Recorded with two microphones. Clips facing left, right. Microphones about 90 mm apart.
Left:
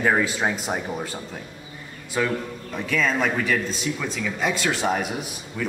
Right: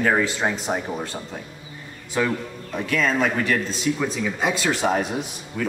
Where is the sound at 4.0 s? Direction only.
20° right (ahead or behind).